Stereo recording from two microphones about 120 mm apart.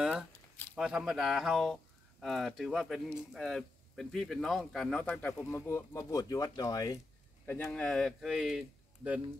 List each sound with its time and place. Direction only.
0.7 s speech: 5° right (ahead or behind); by 7.0 s 30° left (ahead or behind)
7.4 s speech: 20° left (ahead or behind)
7.7 s speech: 5° left (ahead or behind)